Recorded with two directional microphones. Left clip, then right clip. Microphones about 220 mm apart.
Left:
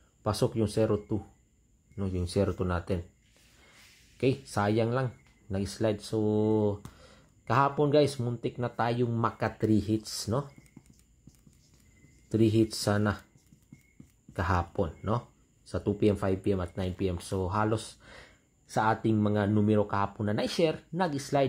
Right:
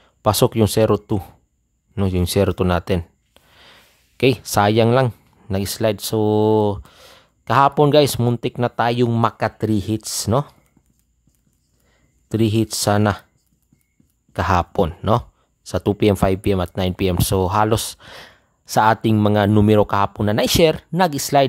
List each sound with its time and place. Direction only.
0.2 s speech: 40° right (ahead or behind)
4.2 s speech: 40° right (ahead or behind)
12.3 s speech: 35° right (ahead or behind)
14.3 s speech: 35° right (ahead or behind)